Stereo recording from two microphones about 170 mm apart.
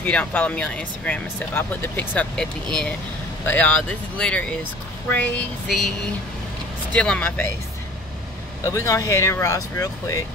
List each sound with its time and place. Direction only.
0.0 s speech: 10° left (ahead or behind)
5.1 s a sound: 5° left (ahead or behind)
6.9 s speech: 5° left (ahead or behind)
8.6 s speech: 20° left (ahead or behind)